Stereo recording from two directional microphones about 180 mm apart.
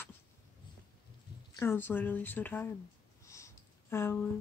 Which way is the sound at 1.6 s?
10° left (ahead or behind).